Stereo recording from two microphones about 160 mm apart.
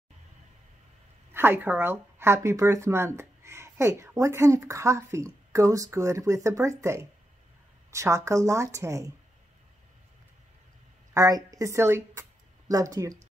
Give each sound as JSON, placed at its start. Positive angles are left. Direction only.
{"t": 1.3, "sound": "speech", "side_deg": -15}
{"t": 11.1, "sound": "a woman's voice", "side_deg": -20}